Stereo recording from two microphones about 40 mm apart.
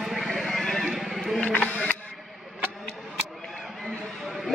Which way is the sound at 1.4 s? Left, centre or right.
Left.